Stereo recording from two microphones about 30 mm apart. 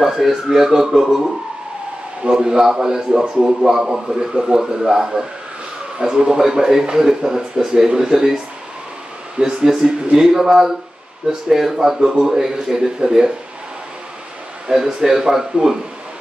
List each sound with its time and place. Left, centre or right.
0.0 s a man's voice: centre
2.2 s a man's voice: right
9.7 s a man's voice: centre
14.7 s a man's voice: centre